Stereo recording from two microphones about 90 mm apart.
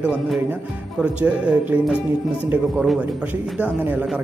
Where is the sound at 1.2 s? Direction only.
15° right (ahead or behind).